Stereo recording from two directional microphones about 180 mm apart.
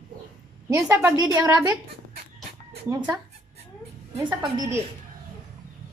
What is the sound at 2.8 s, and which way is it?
Speech, 15° right (ahead or behind).